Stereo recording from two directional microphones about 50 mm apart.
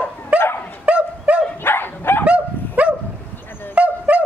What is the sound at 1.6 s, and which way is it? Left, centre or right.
Dog, left.